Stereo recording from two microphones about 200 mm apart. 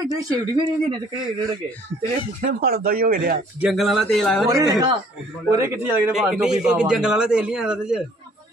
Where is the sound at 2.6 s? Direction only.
50° right (ahead or behind).